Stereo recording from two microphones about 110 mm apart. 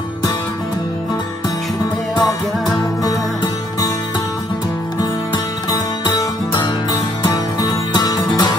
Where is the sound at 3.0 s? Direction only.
35° left (ahead or behind).